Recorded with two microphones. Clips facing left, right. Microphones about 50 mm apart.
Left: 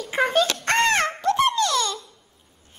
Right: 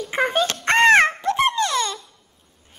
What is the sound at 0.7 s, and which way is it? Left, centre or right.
Dog, right.